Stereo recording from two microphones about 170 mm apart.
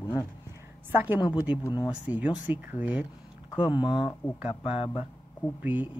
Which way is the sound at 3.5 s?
30° left (ahead or behind).